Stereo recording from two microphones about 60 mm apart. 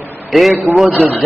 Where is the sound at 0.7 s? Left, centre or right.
Centre.